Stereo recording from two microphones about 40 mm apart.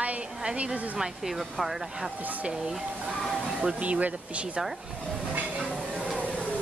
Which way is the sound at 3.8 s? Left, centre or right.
Right.